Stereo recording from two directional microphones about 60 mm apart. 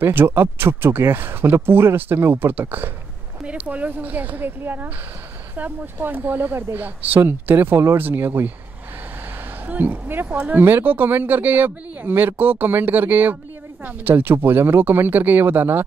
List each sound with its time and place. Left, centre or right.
0.0 s speech: right
8.0 s speech: right
9.7 s speech: right